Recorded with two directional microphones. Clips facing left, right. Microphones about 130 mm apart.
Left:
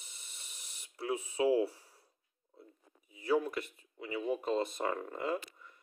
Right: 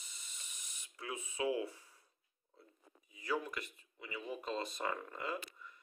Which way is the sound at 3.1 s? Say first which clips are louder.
Left 8 dB; 30° left (ahead or behind).